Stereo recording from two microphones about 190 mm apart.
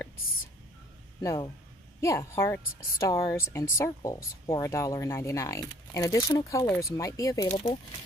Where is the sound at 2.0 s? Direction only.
15° left (ahead or behind).